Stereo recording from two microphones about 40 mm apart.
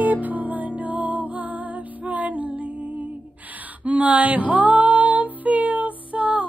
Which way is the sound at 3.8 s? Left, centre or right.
Right.